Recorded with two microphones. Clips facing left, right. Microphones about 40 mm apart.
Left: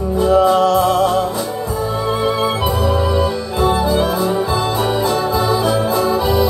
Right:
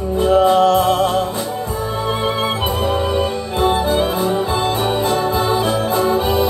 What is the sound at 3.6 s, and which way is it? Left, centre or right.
Music, right.